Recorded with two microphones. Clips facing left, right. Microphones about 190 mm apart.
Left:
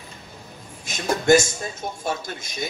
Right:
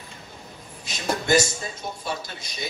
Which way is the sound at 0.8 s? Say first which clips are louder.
Left 6 dB; 45° left (ahead or behind).